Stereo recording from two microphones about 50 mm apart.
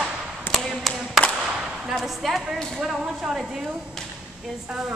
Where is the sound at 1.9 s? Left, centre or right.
Centre.